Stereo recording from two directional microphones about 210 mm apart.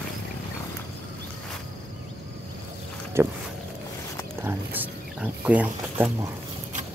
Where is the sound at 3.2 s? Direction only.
10° right (ahead or behind).